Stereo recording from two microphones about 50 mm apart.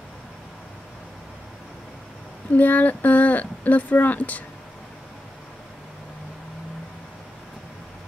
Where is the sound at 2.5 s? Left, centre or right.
Left.